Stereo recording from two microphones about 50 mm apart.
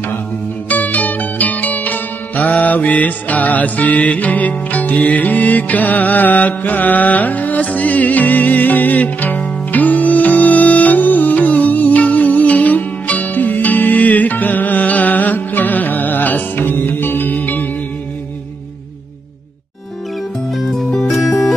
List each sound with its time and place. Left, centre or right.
0.7 s music: left
20.5 s music: centre